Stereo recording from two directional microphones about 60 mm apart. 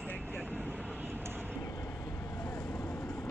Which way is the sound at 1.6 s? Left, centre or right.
Left.